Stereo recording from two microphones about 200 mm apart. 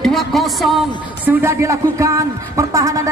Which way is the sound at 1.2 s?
15° right (ahead or behind).